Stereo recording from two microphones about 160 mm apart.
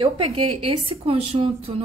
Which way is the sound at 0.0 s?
35° right (ahead or behind).